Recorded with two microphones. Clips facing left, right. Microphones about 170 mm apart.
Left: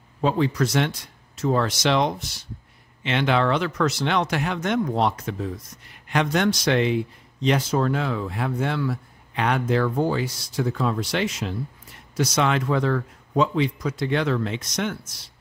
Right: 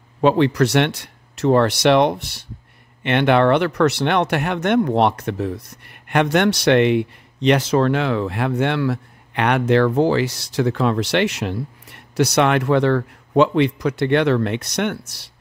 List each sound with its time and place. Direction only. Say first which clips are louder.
0.2 s speech: right 6 dB; 75° right (ahead or behind)